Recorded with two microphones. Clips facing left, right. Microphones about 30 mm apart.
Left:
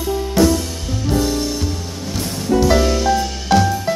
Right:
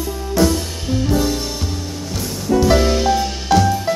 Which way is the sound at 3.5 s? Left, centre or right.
Centre.